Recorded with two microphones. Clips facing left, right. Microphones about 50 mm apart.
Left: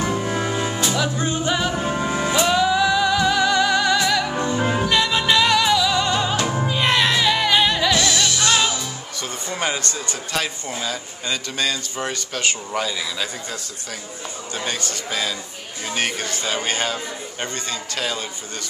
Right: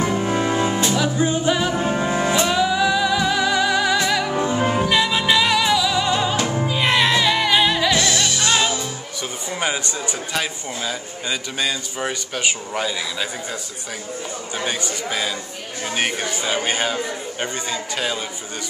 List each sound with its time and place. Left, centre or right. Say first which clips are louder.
0.1 s music: right 3 dB; centre
0.9 s music: right 3 dB; centre
7.9 s music: even; centre
9.5 s speech: right 1 dB; centre
14.6 s speech: right 2 dB; centre